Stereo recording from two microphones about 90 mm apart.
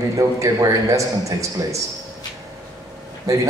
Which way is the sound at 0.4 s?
35° right (ahead or behind).